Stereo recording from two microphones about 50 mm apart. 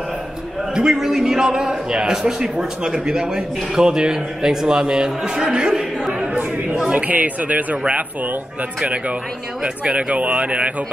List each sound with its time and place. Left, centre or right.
0.7 s a man's voice: centre
6.3 s chatter: right
7.0 s speech: right
9.8 s speech: right